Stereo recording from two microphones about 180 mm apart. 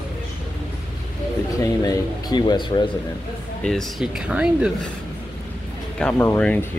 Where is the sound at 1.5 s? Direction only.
20° left (ahead or behind).